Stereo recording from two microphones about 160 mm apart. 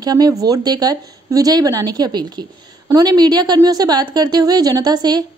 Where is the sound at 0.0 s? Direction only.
25° right (ahead or behind).